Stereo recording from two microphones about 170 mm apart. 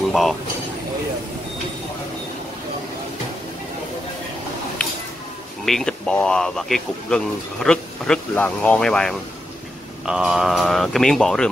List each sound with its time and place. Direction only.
0.1 s speech: centre (ahead or behind)
5.7 s speech: 5° left (ahead or behind)